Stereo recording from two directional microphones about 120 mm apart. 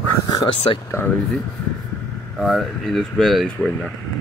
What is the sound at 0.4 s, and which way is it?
Speech, 50° left (ahead or behind).